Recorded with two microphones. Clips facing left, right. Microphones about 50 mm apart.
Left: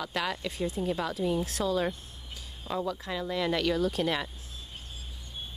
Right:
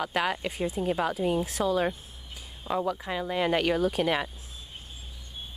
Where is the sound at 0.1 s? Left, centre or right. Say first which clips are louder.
Right 4 dB; right.